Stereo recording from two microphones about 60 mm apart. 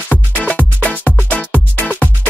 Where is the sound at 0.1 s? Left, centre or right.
Left.